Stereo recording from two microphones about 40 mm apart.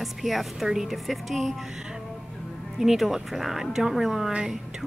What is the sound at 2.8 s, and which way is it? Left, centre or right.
A woman's voice, centre.